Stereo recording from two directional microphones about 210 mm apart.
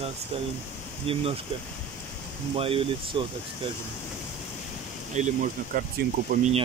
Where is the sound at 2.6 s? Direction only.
25° right (ahead or behind).